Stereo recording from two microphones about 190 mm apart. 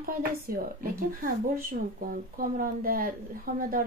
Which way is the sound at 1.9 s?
50° right (ahead or behind).